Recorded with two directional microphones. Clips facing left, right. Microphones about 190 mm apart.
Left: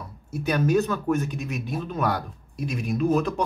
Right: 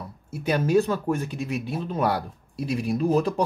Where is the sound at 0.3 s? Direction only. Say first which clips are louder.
Right 1 dB; 25° right (ahead or behind).